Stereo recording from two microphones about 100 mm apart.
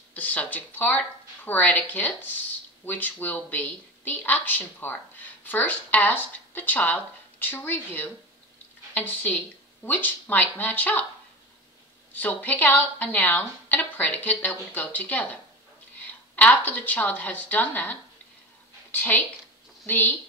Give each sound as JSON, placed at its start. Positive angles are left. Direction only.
{"t": 0.1, "sound": "speech", "side_deg": 15}
{"t": 12.1, "sound": "speech", "side_deg": 15}
{"t": 16.3, "sound": "a woman's voice", "side_deg": 15}